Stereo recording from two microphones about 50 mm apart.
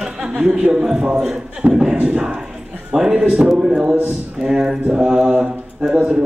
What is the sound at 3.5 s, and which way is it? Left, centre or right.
A man's voice, centre.